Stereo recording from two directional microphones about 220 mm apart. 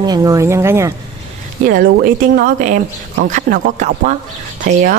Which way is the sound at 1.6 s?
40° right (ahead or behind).